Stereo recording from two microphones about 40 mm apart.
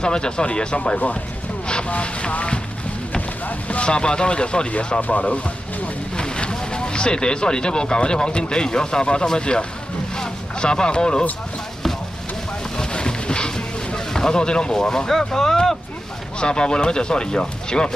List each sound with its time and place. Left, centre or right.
0.0 s speech: left
1.9 s speech: left
3.6 s speech: left
6.1 s speech: left
10.1 s a sound: centre
12.7 s boat: left
16.3 s speech: left